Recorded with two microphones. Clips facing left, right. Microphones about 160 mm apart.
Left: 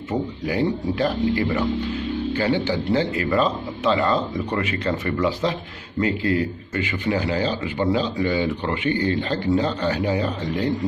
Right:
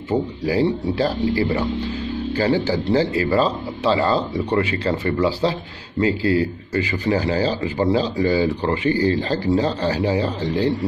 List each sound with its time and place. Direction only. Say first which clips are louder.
0.1 s speech: right 4 dB; 30° right (ahead or behind)